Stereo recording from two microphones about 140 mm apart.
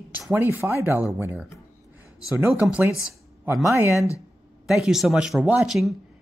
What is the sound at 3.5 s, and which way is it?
Speech, 20° right (ahead or behind).